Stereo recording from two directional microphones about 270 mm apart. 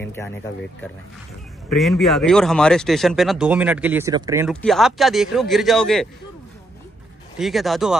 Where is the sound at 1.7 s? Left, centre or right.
Centre.